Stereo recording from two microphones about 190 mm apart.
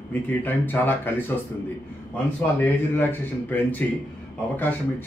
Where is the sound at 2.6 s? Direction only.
10° left (ahead or behind).